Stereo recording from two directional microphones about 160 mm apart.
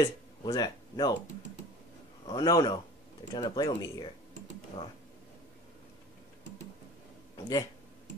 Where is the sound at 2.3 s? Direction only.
25° left (ahead or behind).